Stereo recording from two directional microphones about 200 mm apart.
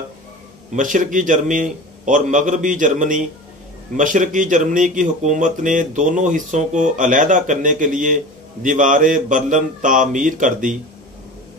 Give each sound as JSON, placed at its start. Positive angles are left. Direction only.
{"t": 0.7, "sound": "speech", "side_deg": -40}